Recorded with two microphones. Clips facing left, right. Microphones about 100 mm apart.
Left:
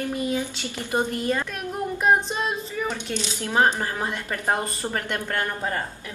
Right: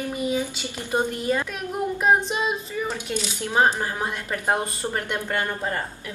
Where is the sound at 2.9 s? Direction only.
10° right (ahead or behind).